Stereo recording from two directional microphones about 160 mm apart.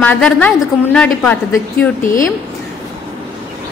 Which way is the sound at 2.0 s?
60° left (ahead or behind).